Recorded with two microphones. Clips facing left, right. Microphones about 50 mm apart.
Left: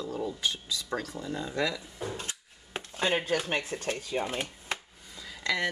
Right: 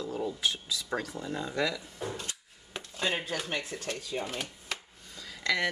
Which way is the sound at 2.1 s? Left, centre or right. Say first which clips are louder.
Left 1 dB; left.